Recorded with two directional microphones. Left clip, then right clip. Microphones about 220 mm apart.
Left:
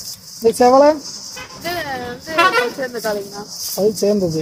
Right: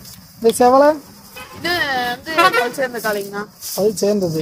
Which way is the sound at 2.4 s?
15° right (ahead or behind).